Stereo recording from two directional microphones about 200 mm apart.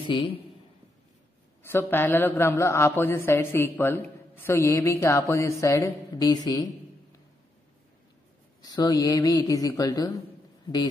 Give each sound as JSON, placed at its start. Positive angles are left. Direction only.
{"t": 0.1, "sound": "a man's voice", "side_deg": 25}
{"t": 1.6, "sound": "a man's voice", "side_deg": 10}
{"t": 8.6, "sound": "a man's voice", "side_deg": 20}